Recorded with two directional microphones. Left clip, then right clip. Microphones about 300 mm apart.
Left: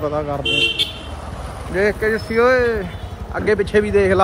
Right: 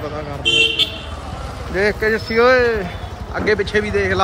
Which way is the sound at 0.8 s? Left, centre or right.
Centre.